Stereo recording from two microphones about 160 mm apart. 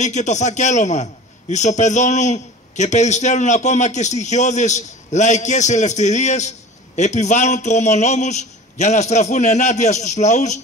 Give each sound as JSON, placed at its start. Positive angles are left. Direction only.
{"t": 0.0, "sound": "a man's voice", "side_deg": 45}